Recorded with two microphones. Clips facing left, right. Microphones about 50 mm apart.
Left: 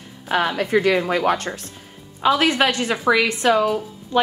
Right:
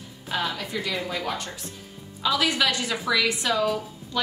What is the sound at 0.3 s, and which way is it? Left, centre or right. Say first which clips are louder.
A woman's voice: left 9 dB; left.